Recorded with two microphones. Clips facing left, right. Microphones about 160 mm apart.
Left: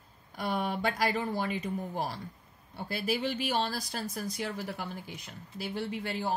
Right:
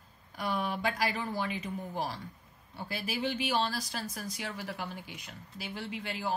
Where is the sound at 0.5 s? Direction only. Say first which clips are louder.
Left 2 dB; 45° left (ahead or behind).